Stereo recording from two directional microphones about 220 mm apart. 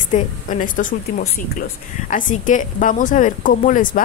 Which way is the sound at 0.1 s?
35° left (ahead or behind).